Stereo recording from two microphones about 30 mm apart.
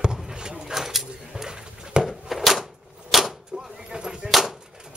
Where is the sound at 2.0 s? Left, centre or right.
Right.